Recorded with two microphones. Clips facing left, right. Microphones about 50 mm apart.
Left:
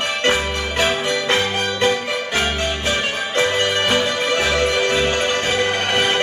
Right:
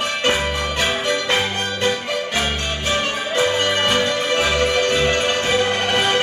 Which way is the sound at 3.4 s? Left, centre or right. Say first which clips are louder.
Even; centre.